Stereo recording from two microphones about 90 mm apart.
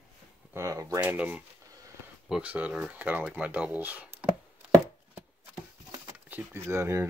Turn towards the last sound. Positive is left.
turn(degrees=-30)  # may be behind; listen again after turning